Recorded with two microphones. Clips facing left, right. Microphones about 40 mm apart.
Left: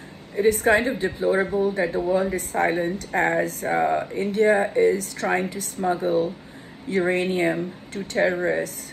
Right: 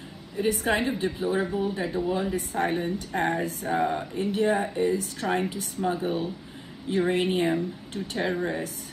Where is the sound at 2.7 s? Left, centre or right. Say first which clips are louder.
Left 4 dB; left.